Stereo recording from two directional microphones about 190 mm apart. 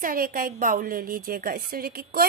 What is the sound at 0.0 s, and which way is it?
A woman's voice, 50° right (ahead or behind).